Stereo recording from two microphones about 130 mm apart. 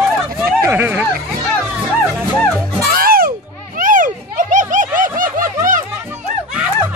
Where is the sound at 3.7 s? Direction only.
90° right.